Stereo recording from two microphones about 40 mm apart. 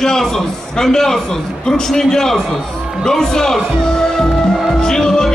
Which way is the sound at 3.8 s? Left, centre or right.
Centre.